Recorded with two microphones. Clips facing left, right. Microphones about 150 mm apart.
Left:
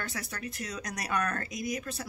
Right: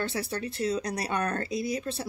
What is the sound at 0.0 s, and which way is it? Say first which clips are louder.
Speech: right 7 dB; 30° right (ahead or behind).